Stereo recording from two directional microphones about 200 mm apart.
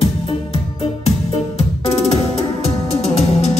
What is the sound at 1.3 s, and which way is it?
Music, 30° left (ahead or behind).